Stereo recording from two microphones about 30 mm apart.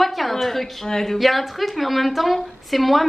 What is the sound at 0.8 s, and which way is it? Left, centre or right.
Speech, centre.